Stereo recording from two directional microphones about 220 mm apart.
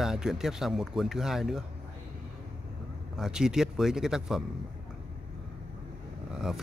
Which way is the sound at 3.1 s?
Centre (ahead or behind).